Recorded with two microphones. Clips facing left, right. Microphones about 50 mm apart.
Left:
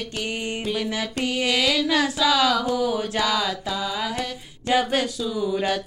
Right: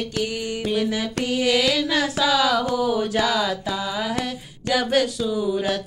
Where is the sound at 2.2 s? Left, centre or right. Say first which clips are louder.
Right 2 dB; centre.